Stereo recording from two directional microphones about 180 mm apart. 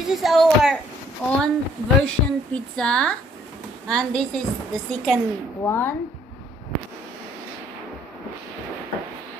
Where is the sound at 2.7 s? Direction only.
5° left (ahead or behind).